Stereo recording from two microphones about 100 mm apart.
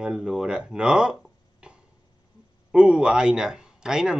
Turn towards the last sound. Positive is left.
turn(degrees=-5)  # may be behind; listen again after turning